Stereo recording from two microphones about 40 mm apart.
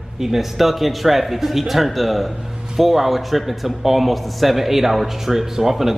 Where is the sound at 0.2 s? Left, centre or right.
Centre.